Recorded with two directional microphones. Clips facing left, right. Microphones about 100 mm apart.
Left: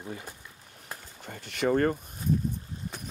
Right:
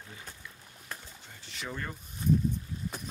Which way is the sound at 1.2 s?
55° left (ahead or behind).